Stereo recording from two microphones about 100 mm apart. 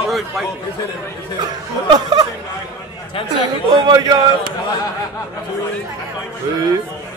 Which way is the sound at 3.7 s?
45° right (ahead or behind).